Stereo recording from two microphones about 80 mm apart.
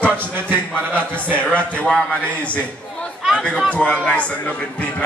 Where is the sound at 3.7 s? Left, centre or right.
Centre.